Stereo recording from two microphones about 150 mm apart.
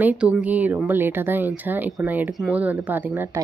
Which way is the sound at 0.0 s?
10° right (ahead or behind).